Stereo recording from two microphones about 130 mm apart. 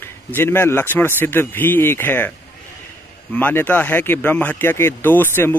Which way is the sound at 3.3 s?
15° left (ahead or behind).